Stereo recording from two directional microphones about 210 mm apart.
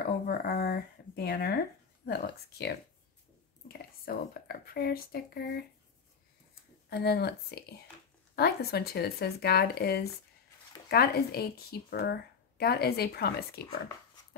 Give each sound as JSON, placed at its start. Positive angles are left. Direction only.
{"t": 0.0, "sound": "a woman's voice", "side_deg": 45}
{"t": 6.9, "sound": "a woman's voice", "side_deg": 50}